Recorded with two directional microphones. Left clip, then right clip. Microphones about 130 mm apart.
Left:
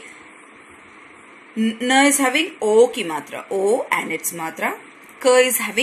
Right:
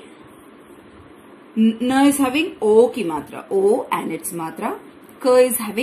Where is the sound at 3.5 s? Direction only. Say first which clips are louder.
Right 1 dB; 30° left (ahead or behind).